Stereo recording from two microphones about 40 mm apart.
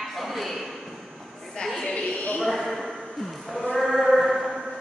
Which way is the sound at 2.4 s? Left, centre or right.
Centre.